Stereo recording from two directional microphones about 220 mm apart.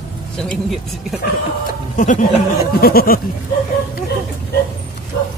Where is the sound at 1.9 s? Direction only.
35° left (ahead or behind).